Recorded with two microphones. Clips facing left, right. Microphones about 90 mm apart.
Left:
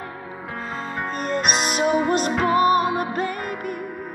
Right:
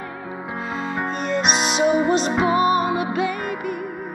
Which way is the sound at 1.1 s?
45° left (ahead or behind).